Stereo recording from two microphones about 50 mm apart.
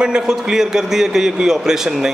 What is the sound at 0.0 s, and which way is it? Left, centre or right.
A man's voice, centre.